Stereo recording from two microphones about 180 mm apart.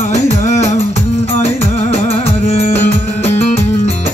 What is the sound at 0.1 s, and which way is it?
Music, 40° left (ahead or behind).